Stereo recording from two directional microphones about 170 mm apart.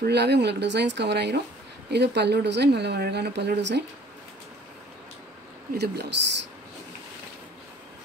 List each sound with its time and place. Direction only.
0.0 s speech: 80° right
5.8 s speech: 75° right (ahead or behind)